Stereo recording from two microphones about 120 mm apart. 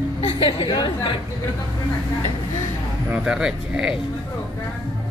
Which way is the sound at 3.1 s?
5° right (ahead or behind).